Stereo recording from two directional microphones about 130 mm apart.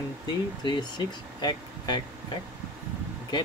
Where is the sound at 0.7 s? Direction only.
35° left (ahead or behind).